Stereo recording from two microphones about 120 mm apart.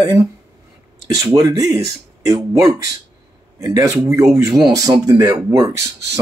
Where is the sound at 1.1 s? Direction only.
30° right (ahead or behind).